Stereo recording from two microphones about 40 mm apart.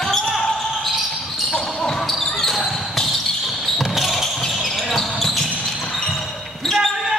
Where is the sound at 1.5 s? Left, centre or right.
Centre.